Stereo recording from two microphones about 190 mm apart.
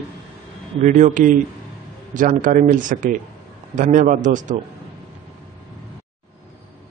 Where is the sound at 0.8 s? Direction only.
40° right (ahead or behind).